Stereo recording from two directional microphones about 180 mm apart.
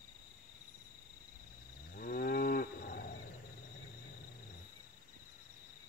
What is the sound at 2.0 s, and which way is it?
Cattle, 55° left (ahead or behind).